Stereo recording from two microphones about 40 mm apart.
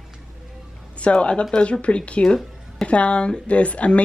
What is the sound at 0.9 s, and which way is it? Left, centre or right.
A woman's voice, left.